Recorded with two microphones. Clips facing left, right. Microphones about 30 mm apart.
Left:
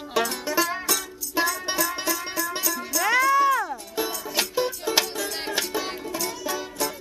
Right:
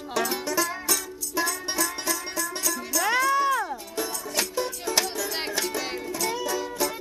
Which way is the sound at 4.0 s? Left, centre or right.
Centre.